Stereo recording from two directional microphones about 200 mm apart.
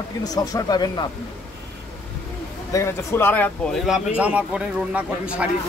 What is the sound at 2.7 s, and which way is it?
Speech, 15° left (ahead or behind).